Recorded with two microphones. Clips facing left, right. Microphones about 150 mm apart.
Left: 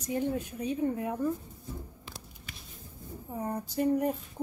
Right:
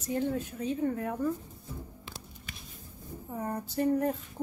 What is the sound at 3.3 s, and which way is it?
Speech, 10° left (ahead or behind).